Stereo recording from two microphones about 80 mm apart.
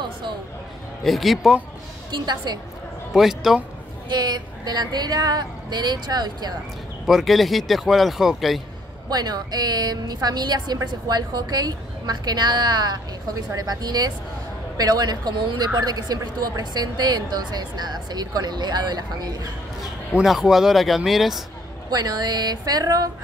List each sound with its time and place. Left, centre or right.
1.0 s speech: centre
2.1 s speech: right
3.1 s speech: centre
4.1 s speech: right
7.1 s speech: centre
9.1 s a woman's voice: right
20.2 s speech: centre
21.9 s speech: right